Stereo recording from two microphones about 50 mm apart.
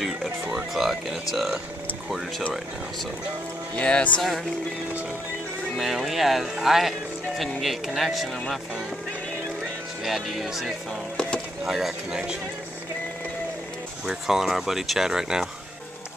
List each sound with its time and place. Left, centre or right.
0.7 s speech: centre
3.7 s music: left
5.8 s speech: centre
6.6 s music: centre
7.6 s speech: centre
10.0 s speech: centre
11.1 s a sound: left
11.6 s speech: centre
14.0 s speech: centre